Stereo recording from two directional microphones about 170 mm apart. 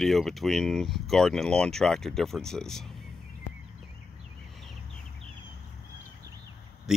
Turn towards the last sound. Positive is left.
turn(degrees=0)  # may be behind; listen again after turning